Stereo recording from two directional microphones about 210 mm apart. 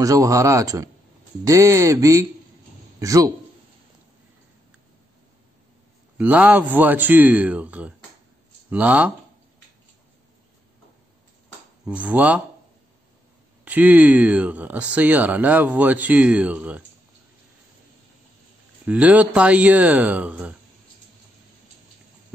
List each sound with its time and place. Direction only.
0.0 s a man's voice: 15° right (ahead or behind)
6.1 s speech: 5° right (ahead or behind)
11.8 s speech: 5° right (ahead or behind)
13.7 s speech: 5° right (ahead or behind)
18.9 s speech: 5° right (ahead or behind)